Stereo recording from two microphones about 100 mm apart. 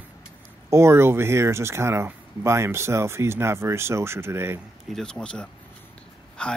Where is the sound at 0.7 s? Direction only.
25° right (ahead or behind).